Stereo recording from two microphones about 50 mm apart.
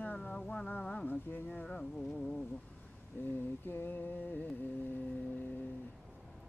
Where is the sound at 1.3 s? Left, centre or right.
Left.